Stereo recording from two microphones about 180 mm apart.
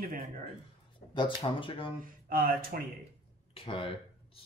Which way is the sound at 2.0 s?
50° right (ahead or behind).